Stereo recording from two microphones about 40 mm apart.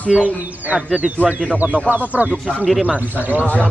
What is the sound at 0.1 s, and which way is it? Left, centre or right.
Speech, right.